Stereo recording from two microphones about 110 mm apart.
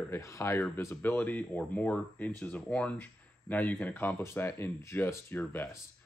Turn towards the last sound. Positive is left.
turn(degrees=20)  # may be behind; listen again after turning